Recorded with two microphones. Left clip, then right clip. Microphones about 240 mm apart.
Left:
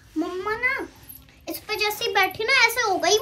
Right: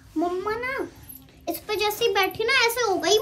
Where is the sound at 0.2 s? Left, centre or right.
Right.